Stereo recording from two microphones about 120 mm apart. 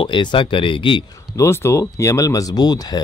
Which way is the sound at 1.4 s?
25° left (ahead or behind).